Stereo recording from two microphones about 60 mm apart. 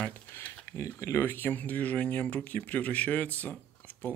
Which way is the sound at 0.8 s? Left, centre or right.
Left.